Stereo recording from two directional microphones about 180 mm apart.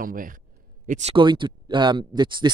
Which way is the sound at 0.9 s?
35° right (ahead or behind).